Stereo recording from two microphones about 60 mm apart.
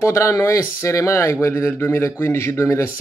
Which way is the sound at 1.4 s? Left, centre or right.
Left.